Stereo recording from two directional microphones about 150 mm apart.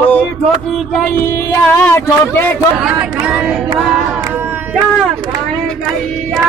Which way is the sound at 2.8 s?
5° right (ahead or behind).